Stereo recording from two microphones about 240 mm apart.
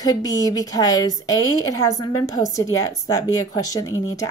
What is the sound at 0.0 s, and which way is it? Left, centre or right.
Speech, centre.